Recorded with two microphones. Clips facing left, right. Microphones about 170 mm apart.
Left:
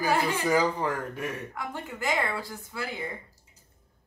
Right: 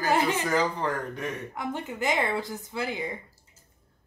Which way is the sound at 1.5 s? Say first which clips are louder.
Right 4 dB; 20° right (ahead or behind).